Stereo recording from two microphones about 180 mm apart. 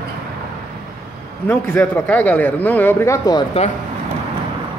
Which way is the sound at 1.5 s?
10° left (ahead or behind).